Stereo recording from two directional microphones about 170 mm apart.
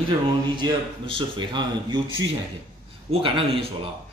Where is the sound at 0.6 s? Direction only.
30° right (ahead or behind).